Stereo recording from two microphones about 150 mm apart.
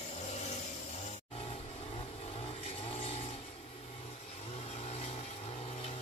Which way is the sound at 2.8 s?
40° left (ahead or behind).